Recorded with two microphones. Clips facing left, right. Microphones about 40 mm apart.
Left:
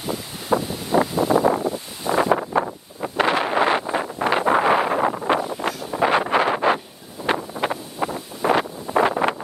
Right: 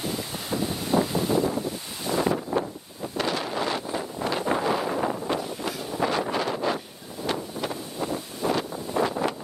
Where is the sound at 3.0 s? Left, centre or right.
Left.